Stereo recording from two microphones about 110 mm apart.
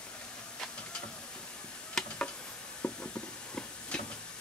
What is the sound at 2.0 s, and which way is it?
Tick-tock, 10° left (ahead or behind).